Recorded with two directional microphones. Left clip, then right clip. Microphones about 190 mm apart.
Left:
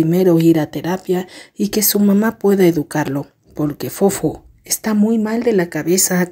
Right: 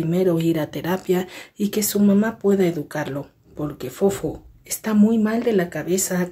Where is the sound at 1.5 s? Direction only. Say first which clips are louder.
Left 5 dB; 35° left (ahead or behind).